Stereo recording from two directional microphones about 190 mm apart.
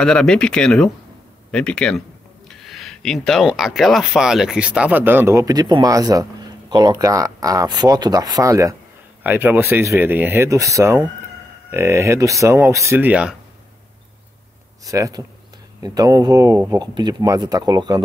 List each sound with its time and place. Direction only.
0.0 s speech: 5° left (ahead or behind)
14.9 s speech: 20° right (ahead or behind)